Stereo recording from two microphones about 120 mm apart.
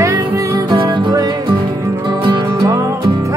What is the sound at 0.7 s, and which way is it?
Music, 40° right (ahead or behind).